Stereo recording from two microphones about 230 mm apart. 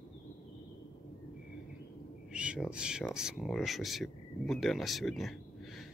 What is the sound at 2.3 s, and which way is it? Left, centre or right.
Speech, centre.